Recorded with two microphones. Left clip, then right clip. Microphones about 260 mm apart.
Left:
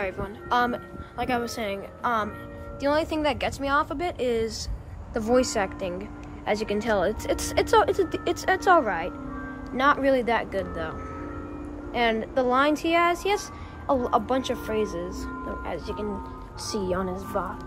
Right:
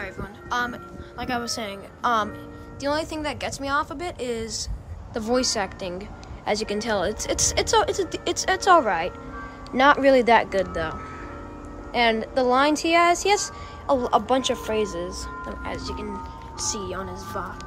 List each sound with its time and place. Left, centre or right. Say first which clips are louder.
0.0 s speech: left 4 dB; centre
16.8 s speech: left 3 dB; left